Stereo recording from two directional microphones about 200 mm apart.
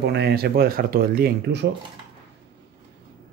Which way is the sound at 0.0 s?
55° right (ahead or behind).